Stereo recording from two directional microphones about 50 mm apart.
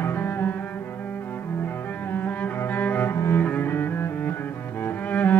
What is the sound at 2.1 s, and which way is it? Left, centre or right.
Cello, left.